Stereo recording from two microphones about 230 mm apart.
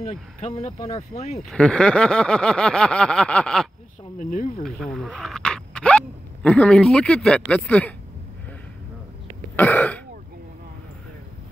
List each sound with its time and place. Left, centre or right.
0.0 s speech: left
1.5 s a sound: centre
4.2 s speech: left
4.6 s speech: centre
9.6 s speech: centre